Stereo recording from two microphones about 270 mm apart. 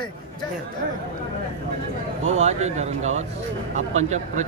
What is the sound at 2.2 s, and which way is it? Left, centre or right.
A man's voice, right.